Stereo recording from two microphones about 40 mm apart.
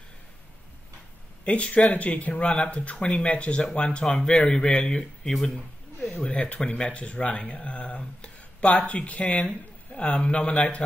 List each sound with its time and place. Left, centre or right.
1.4 s speech: left
5.3 s speech: centre
6.1 s a man's voice: left